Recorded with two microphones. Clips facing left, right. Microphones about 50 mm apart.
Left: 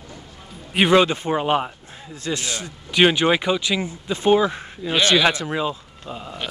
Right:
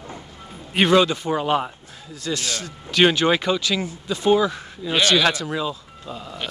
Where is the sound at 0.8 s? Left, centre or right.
Left.